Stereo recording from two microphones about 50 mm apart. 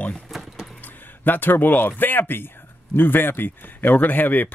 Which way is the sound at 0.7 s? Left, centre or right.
Left.